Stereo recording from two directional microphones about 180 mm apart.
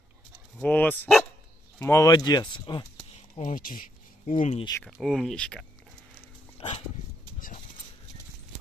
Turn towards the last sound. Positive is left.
turn(degrees=30)  # may be behind; listen again after turning